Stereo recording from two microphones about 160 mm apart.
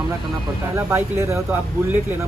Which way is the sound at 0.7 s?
15° right (ahead or behind).